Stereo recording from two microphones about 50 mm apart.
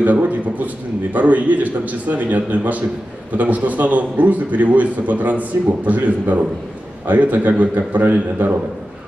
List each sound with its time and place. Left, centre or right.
0.0 s a man's voice: right